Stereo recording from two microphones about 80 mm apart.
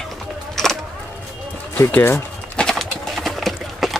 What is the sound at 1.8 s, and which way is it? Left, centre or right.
Speech, left.